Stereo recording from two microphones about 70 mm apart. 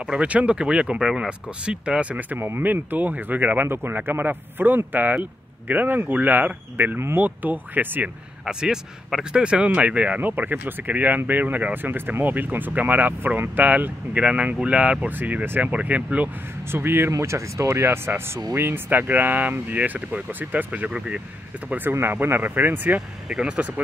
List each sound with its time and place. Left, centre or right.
0.0 s speech: centre
8.5 s speech: centre
16.7 s speech: right
17.1 s speech: right
23.2 s speech: centre